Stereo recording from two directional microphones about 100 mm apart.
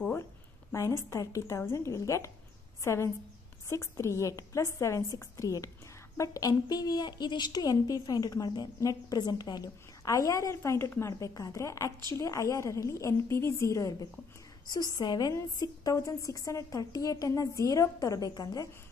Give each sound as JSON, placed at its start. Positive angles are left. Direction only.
{"t": 0.7, "sound": "a woman's voice", "side_deg": 30}
{"t": 14.7, "sound": "a woman's voice", "side_deg": 40}